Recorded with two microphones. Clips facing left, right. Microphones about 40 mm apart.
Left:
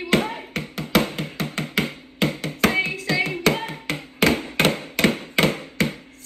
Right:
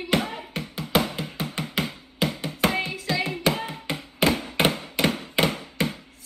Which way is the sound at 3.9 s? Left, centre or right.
Left.